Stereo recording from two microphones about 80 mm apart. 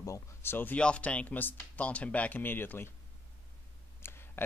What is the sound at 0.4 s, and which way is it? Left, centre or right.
Speech, left.